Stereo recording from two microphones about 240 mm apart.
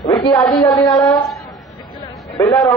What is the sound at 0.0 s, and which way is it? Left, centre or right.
A woman's voice, centre.